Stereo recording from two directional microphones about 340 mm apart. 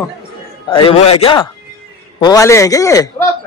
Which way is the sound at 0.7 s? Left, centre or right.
Centre.